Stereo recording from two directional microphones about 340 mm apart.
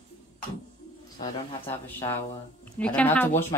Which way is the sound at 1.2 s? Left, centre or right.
Centre.